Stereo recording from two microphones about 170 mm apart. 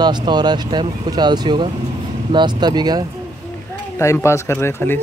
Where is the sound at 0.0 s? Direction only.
25° right (ahead or behind).